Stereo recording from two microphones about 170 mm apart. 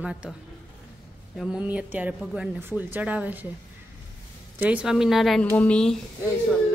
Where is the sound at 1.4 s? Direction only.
5° right (ahead or behind).